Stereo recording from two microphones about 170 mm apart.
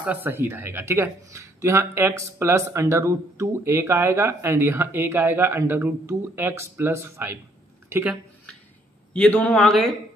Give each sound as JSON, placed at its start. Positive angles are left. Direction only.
{"t": 0.0, "sound": "speech", "side_deg": -10}
{"t": 9.1, "sound": "speech", "side_deg": 5}